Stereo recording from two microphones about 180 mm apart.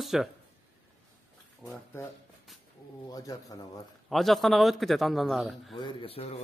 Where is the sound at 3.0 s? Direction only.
20° left (ahead or behind).